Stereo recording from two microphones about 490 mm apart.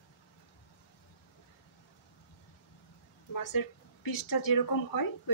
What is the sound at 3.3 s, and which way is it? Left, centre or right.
Speech, left.